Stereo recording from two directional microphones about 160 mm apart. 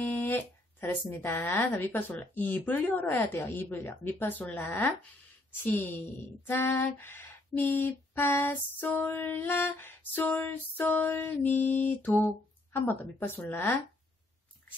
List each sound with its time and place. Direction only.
0.0 s speech: 10° left (ahead or behind)